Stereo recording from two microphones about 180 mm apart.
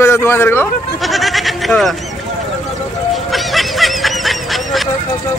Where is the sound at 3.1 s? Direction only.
Centre (ahead or behind).